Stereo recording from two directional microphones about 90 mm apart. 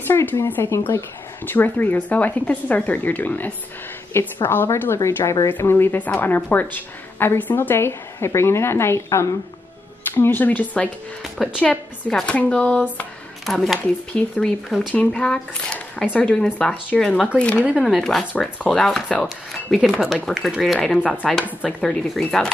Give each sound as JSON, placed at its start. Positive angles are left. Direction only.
{"t": 0.0, "sound": "a woman's voice", "side_deg": 25}
{"t": 13.5, "sound": "speech", "side_deg": 0}
{"t": 14.1, "sound": "speech", "side_deg": 15}